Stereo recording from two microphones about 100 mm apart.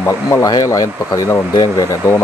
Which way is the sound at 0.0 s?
25° left (ahead or behind).